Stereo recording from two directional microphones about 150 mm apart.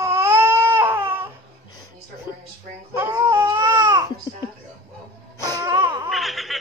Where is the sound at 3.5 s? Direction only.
20° right (ahead or behind).